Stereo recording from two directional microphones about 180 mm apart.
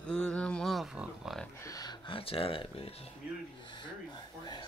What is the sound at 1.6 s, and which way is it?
Speech, 20° left (ahead or behind).